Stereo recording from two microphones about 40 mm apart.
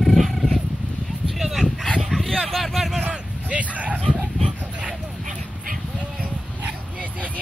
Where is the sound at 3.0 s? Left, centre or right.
Right.